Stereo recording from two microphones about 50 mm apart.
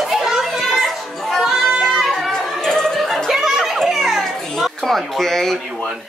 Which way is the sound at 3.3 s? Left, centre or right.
Centre.